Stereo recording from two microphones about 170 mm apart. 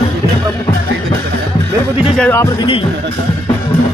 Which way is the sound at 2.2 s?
15° left (ahead or behind).